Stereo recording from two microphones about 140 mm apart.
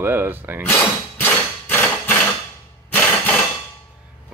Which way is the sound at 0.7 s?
15° left (ahead or behind).